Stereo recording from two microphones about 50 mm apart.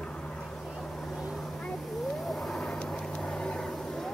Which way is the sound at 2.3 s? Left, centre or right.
Centre.